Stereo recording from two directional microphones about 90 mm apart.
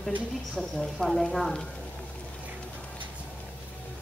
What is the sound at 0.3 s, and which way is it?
A woman's voice, centre (ahead or behind).